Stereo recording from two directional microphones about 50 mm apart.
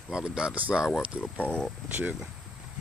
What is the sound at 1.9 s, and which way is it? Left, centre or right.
Speech, right.